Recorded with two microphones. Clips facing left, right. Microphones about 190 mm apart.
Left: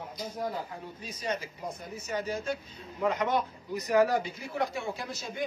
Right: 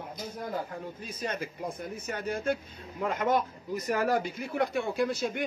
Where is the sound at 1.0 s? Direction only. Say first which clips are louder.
Left 1 dB; 50° right (ahead or behind).